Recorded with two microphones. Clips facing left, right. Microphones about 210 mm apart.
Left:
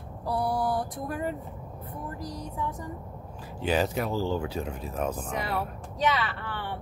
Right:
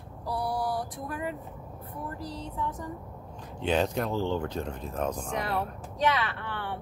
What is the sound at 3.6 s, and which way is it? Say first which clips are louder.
Speech: even; 5° left (ahead or behind).